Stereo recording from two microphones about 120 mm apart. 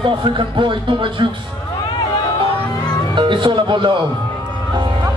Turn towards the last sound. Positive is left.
turn(degrees=-40)  # may be behind; listen again after turning